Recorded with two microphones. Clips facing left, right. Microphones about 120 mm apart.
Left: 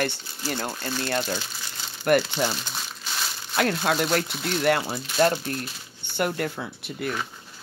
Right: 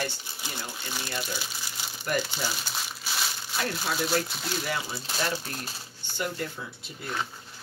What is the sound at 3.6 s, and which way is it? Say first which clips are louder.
Speech: left 7 dB; 70° left (ahead or behind).